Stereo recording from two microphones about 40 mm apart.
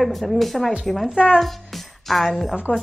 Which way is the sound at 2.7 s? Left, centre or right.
Left.